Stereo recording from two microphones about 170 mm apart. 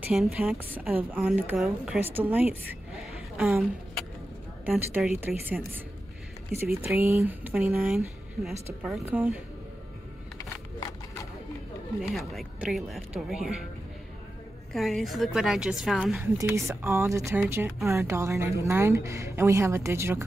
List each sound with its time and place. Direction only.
0.0 s a woman's voice: 5° right (ahead or behind)
9.0 s a woman's voice: 10° right (ahead or behind)
10.3 s a sound: 20° left (ahead or behind)
12.1 s speech: centre (ahead or behind)
14.7 s speech: centre (ahead or behind)
16.2 s a woman's voice: 15° right (ahead or behind)